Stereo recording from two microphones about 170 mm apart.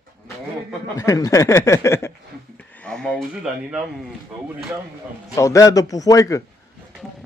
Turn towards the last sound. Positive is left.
turn(degrees=20)  # may be behind; listen again after turning